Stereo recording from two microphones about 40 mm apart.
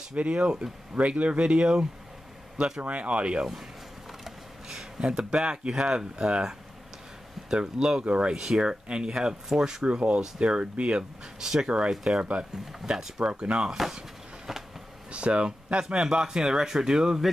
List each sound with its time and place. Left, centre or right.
0.1 s speech: right
2.8 s speech: right
4.2 s a man's voice: centre
9.8 s speech: right
11.3 s a man's voice: centre
12.2 s speech: right
14.5 s a sound: centre
15.0 s a sound: right
15.9 s a man's voice: centre